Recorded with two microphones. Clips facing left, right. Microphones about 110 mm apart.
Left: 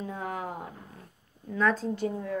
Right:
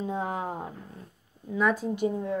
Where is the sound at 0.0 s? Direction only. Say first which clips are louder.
Right 4 dB; 25° right (ahead or behind).